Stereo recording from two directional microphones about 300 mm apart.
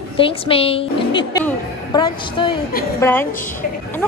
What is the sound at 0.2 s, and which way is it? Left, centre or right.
A woman's voice, centre.